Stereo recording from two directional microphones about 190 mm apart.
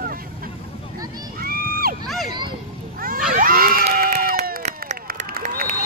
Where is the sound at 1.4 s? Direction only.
50° right (ahead or behind).